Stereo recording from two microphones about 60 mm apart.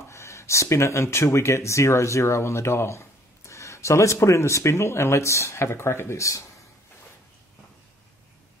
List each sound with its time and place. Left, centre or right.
0.1 s speech: left